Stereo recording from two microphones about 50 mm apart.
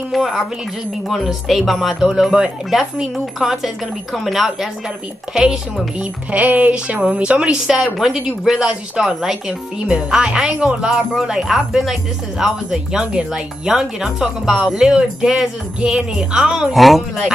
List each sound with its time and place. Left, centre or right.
0.1 s speech: centre
1.6 s speech: centre
5.9 s speech: right
6.9 s speech: right
7.6 s speech: centre
9.5 s speech: centre
16.7 s speech: centre